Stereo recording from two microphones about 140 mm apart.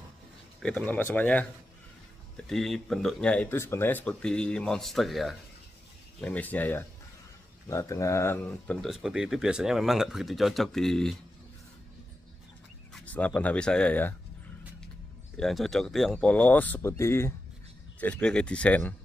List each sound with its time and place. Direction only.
0.6 s speech: 5° left (ahead or behind)
6.2 s speech: 10° left (ahead or behind)
8.4 s speech: 5° left (ahead or behind)
12.9 s speech: 10° left (ahead or behind)
15.3 s speech: centre (ahead or behind); by 17.3 s 20° left (ahead or behind)
18.0 s speech: 10° left (ahead or behind)